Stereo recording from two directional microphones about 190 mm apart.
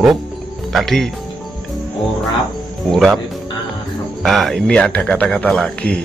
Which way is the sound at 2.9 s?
Centre (ahead or behind).